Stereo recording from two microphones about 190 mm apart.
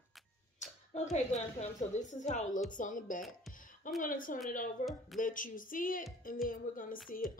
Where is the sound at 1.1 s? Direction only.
35° left (ahead or behind).